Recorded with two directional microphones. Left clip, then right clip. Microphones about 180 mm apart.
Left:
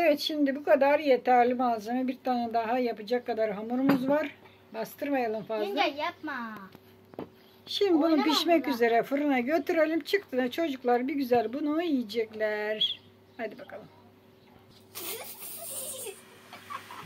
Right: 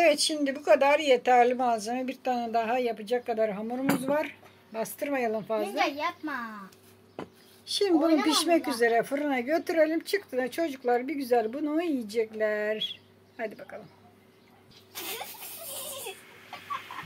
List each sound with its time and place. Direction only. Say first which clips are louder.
0.0 s speech: right 2 dB; 5° right (ahead or behind)
4.7 s a child's voice: even; 15° right (ahead or behind)
6.2 s speech: right 1 dB; 40° right (ahead or behind)
7.8 s speech: right 1 dB; 15° right (ahead or behind)
8.5 s speech: even; centre (ahead or behind)